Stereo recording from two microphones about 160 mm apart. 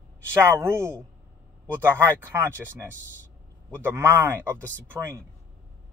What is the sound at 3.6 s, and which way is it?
Speech, 15° right (ahead or behind).